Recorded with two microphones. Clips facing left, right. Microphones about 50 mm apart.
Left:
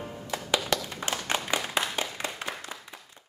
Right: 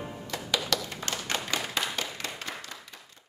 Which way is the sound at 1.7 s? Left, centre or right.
Centre.